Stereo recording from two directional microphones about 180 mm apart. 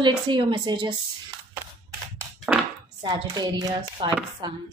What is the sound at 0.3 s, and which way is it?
Chopping, 25° right (ahead or behind).